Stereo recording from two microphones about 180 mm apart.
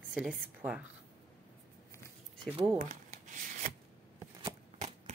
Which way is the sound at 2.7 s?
45° right (ahead or behind).